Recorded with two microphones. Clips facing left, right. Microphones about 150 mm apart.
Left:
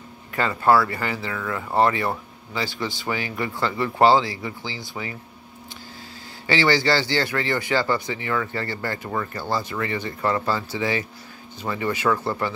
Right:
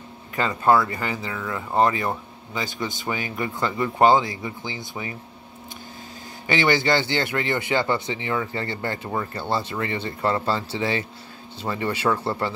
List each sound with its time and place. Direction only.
0.4 s speech: 20° right (ahead or behind)
6.4 s speech: 20° right (ahead or behind)